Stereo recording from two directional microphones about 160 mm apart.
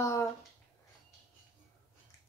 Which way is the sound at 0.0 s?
20° left (ahead or behind).